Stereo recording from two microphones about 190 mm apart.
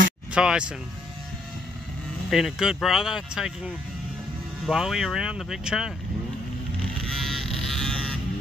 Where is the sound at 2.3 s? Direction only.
Centre (ahead or behind).